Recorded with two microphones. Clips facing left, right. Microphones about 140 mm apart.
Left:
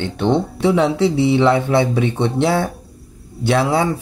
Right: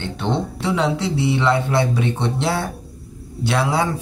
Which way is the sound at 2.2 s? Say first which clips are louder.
Left 5 dB; 55° left (ahead or behind).